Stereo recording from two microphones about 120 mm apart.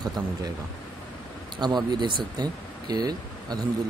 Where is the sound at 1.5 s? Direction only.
35° right (ahead or behind).